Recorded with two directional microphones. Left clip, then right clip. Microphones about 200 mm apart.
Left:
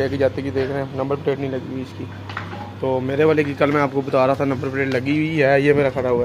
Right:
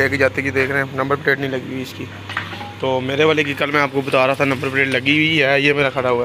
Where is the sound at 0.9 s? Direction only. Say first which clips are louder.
Right 4 dB; 20° right (ahead or behind).